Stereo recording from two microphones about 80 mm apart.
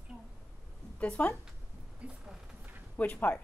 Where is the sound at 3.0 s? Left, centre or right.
Left.